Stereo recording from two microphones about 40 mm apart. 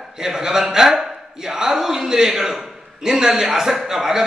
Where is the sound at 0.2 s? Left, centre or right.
Centre.